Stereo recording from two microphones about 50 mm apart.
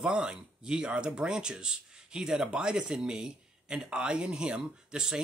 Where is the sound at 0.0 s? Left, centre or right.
Centre.